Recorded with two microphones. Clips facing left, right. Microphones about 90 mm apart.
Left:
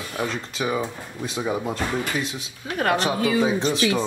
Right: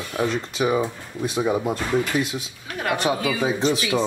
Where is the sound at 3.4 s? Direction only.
5° right (ahead or behind).